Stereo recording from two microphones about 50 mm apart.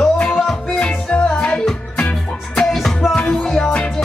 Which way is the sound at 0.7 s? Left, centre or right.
Left.